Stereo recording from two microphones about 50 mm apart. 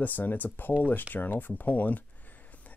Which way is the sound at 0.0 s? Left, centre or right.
Left.